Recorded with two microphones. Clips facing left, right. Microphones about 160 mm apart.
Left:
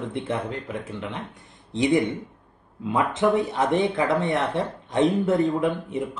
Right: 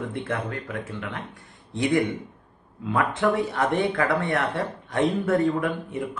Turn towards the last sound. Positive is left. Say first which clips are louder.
# left 3 dB
turn(degrees=20)  # may be behind; listen again after turning